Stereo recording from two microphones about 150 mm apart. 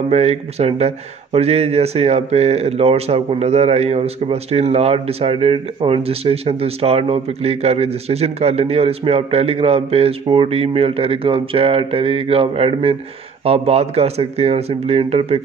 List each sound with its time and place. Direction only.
0.1 s speech: 45° right (ahead or behind)